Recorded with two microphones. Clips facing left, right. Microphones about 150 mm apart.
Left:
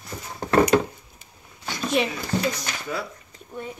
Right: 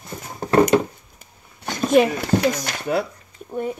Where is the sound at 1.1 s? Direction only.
50° right (ahead or behind).